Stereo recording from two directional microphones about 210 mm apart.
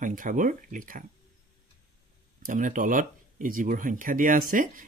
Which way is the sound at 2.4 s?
40° right (ahead or behind).